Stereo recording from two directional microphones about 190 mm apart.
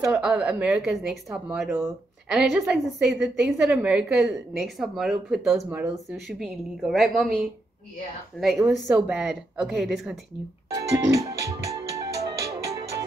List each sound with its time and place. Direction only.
0.1 s a woman's voice: 5° right (ahead or behind)
8.8 s a woman's voice: 10° right (ahead or behind)
10.7 s music: 15° right (ahead or behind)